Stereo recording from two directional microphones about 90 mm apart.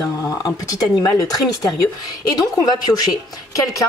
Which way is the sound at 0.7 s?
45° left (ahead or behind).